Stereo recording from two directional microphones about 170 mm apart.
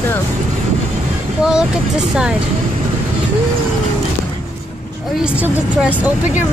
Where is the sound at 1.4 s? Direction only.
5° right (ahead or behind).